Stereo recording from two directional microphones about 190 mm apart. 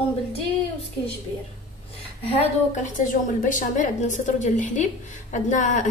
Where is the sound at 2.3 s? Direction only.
35° left (ahead or behind).